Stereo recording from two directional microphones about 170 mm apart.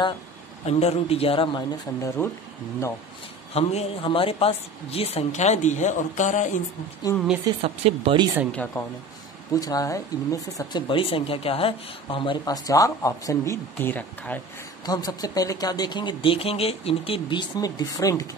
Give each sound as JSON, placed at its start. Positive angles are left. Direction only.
{"t": 0.7, "sound": "speech", "side_deg": 35}
{"t": 3.5, "sound": "speech", "side_deg": 35}
{"t": 7.6, "sound": "speech", "side_deg": -35}
{"t": 8.5, "sound": "speech", "side_deg": 10}
{"t": 9.5, "sound": "speech", "side_deg": 20}
{"t": 14.9, "sound": "speech", "side_deg": 25}